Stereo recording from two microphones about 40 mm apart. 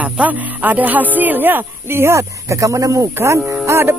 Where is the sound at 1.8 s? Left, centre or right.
Right.